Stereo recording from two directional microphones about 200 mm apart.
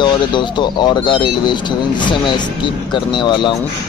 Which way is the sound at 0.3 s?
25° left (ahead or behind).